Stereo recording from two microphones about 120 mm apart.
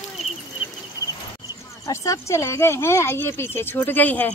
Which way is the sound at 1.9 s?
25° left (ahead or behind).